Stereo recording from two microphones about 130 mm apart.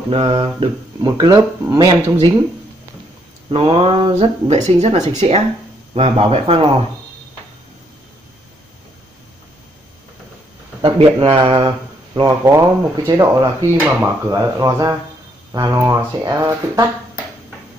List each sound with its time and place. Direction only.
0.1 s speech: 45° right (ahead or behind)
1.0 s speech: 25° right (ahead or behind)
1.9 s speech: 40° right (ahead or behind)
3.5 s speech: 45° right (ahead or behind)
4.6 s speech: 55° right (ahead or behind)
10.8 s speech: 40° right (ahead or behind); by 13.7 s 25° right (ahead or behind)
13.7 s speech: 10° right (ahead or behind)
14.0 s speech: 25° right (ahead or behind)